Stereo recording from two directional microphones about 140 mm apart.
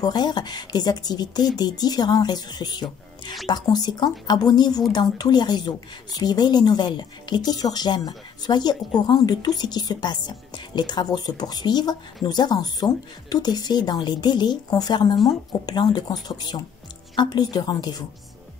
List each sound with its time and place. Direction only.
0.0 s speech: 30° left (ahead or behind)